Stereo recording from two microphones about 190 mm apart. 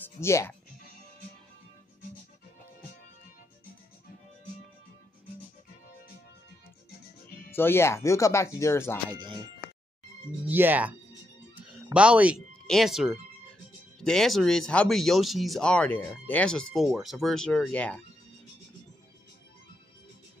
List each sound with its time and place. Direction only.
0.2 s speech: 15° left (ahead or behind)
7.2 s speech: 10° left (ahead or behind)
9.2 s speech: 25° right (ahead or behind)
10.4 s speech: 10° right (ahead or behind)
11.5 s music: 5° right (ahead or behind)
13.9 s speech: centre (ahead or behind)